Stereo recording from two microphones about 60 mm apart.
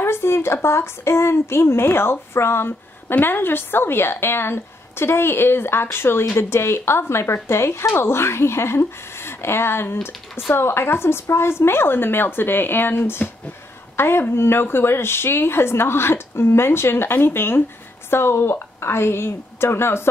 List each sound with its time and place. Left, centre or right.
0.0 s a woman's voice: left